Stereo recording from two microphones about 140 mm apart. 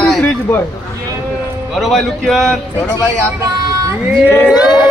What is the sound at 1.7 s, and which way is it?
Speech, centre (ahead or behind).